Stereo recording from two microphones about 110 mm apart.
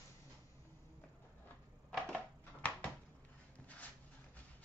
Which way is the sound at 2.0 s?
10° left (ahead or behind).